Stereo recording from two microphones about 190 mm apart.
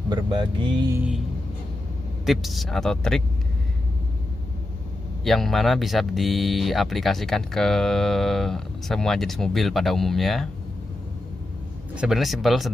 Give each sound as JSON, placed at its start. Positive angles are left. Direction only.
{"t": 0.1, "sound": "speech", "side_deg": -25}
{"t": 0.9, "sound": "speech", "side_deg": -5}
{"t": 2.2, "sound": "speech", "side_deg": 0}
{"t": 5.2, "sound": "speech", "side_deg": 0}
{"t": 11.9, "sound": "speech", "side_deg": -5}